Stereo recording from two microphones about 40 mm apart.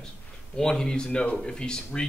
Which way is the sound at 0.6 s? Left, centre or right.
Centre.